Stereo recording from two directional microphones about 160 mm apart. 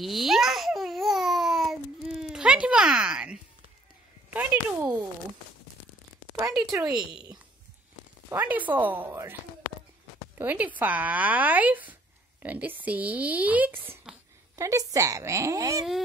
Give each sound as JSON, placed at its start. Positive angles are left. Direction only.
{"t": 0.0, "sound": "babbling", "side_deg": 0}
{"t": 4.3, "sound": "speech", "side_deg": -10}
{"t": 6.6, "sound": "a woman's voice", "side_deg": -20}
{"t": 8.3, "sound": "speech", "side_deg": -10}